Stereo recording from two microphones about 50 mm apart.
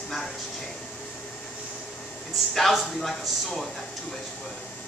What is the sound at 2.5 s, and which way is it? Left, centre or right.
Speech, centre.